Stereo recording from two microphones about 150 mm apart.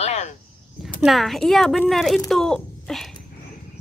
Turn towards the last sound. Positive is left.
turn(degrees=5)  # may be behind; listen again after turning